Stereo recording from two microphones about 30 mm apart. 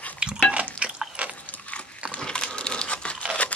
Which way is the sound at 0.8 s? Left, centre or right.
Right.